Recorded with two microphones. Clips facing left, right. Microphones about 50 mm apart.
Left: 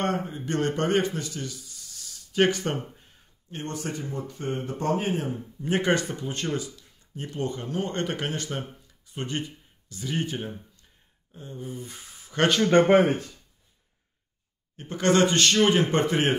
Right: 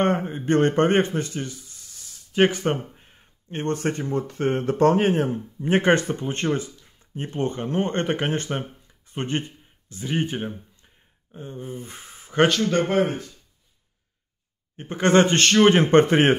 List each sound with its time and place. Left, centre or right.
0.0 s speech: right
5.6 s speech: right
12.6 s speech: left
14.8 s a man's voice: right